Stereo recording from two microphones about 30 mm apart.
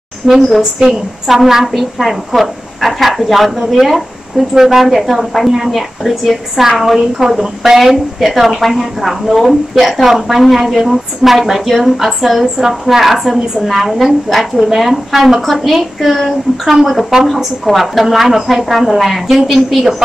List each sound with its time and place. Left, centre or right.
0.3 s a woman's voice: centre
0.6 s speech: centre
1.7 s a woman's voice: centre